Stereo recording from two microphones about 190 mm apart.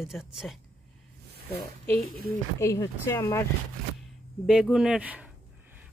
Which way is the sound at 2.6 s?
15° left (ahead or behind).